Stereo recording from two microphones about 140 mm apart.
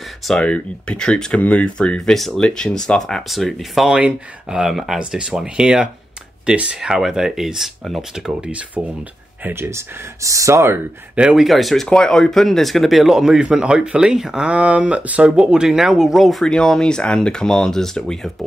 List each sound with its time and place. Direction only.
0.3 s speech: 5° left (ahead or behind); by 10.8 s 20° right (ahead or behind)
11.1 s speech: 5° right (ahead or behind)